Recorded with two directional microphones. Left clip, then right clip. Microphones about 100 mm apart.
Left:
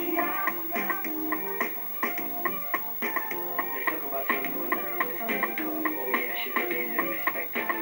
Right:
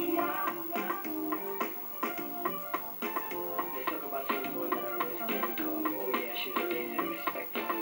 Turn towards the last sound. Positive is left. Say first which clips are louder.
# left 5 dB
turn(degrees=-20)  # may be behind; listen again after turning